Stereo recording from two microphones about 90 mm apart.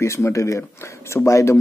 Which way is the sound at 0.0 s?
35° left (ahead or behind).